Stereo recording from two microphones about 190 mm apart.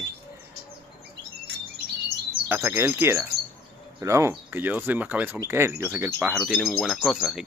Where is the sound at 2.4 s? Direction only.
10° right (ahead or behind).